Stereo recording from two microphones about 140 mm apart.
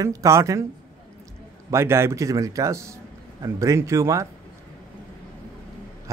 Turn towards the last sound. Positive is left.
turn(degrees=-20)  # may be behind; listen again after turning